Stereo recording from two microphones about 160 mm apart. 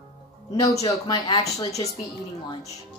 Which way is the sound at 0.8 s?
25° left (ahead or behind).